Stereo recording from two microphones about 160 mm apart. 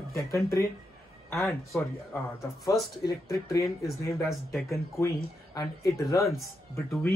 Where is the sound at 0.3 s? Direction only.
20° left (ahead or behind).